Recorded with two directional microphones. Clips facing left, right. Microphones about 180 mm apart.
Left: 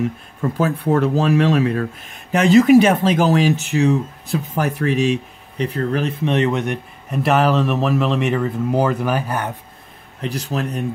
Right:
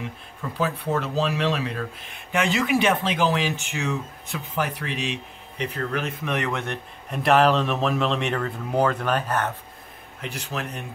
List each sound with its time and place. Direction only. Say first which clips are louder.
0.0 s speech: left 12 dB; 45° left (ahead or behind); by 6.8 s 15° left (ahead or behind)
7.1 s speech: left 2 dB; centre (ahead or behind)
10.2 s speech: left 8 dB; 40° left (ahead or behind)